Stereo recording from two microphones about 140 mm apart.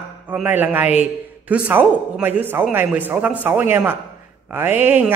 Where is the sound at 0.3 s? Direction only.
10° right (ahead or behind).